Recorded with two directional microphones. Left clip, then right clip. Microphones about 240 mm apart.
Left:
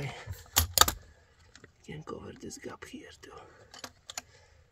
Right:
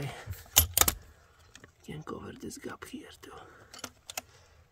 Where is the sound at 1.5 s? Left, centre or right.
Right.